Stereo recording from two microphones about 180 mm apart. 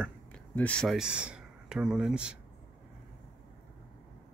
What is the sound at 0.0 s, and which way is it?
Speech, 5° left (ahead or behind).